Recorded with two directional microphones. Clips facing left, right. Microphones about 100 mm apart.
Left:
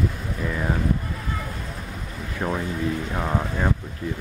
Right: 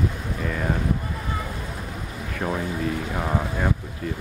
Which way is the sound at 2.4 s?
20° left (ahead or behind).